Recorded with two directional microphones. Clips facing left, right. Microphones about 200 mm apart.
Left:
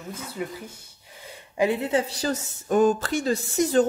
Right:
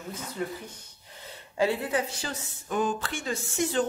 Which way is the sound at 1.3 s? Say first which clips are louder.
Left 3 dB; 15° left (ahead or behind).